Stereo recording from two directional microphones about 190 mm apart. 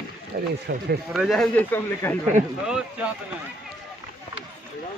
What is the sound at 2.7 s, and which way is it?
Speech, 5° right (ahead or behind).